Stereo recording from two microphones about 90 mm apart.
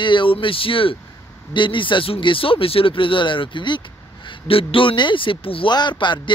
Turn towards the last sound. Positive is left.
turn(degrees=60)  # may be behind; listen again after turning